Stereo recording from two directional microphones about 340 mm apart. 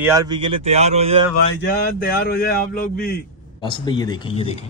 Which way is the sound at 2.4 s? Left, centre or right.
Left.